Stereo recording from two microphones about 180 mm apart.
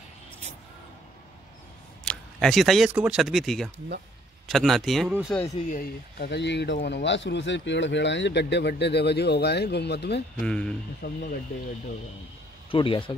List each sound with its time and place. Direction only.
2.0 s speech: centre (ahead or behind)
5.4 s speech: 40° left (ahead or behind)
5.9 s speech: 60° left (ahead or behind)
10.4 s speech: 5° left (ahead or behind)
11.0 s speech: 60° left (ahead or behind)
12.7 s speech: 30° left (ahead or behind)